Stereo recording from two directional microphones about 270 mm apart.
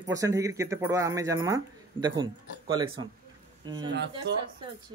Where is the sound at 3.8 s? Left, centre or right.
Right.